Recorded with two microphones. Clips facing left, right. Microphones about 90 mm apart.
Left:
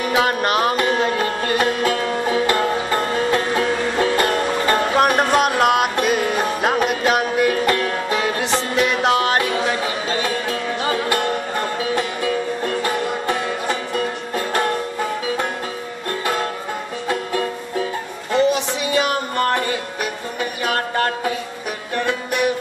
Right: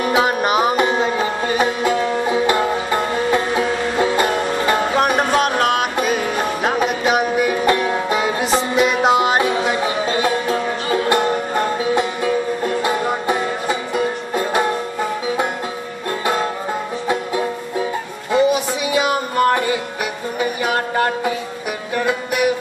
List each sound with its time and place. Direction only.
0.2 s music: 10° right (ahead or behind)
0.8 s music: 20° right (ahead or behind)
1.1 s music: 10° right (ahead or behind)
7.5 s music: 15° right (ahead or behind)
17.1 s music: 15° right (ahead or behind)